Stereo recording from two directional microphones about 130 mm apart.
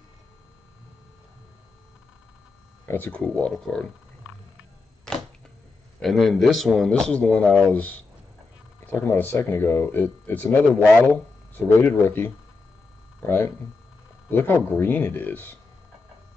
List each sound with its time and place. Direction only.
2.9 s speech: 10° left (ahead or behind)
5.9 s a man's voice: centre (ahead or behind)